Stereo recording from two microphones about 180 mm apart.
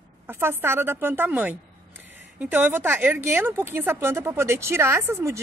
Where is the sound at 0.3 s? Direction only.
10° right (ahead or behind).